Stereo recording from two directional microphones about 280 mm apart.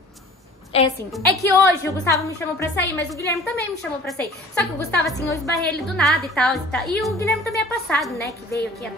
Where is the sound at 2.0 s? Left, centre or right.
Centre.